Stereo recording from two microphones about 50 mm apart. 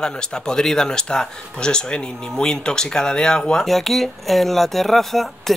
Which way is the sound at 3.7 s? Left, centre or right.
Centre.